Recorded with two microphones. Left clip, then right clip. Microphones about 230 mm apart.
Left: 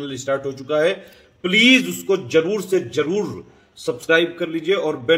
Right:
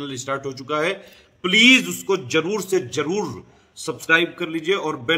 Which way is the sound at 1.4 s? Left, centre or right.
Right.